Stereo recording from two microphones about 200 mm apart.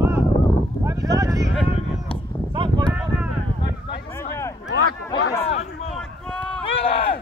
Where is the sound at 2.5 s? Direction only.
25° right (ahead or behind).